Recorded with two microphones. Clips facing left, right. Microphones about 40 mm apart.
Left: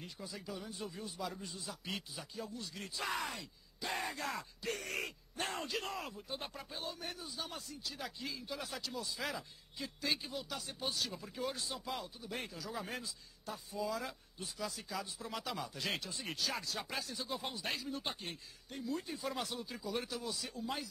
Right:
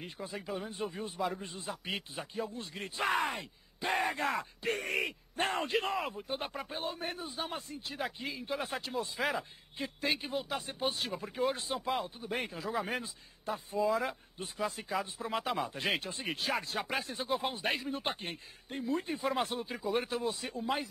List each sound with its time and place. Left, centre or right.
0.0 s a man's voice: right